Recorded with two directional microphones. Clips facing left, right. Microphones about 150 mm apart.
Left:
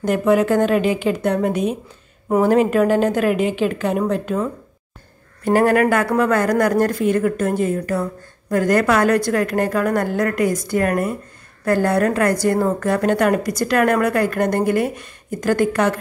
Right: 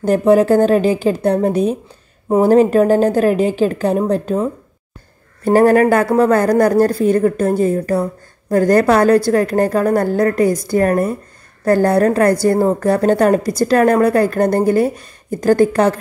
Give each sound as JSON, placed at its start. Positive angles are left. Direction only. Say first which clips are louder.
{"t": 0.0, "sound": "a woman's voice", "louder": "right 5 dB", "side_deg": -35}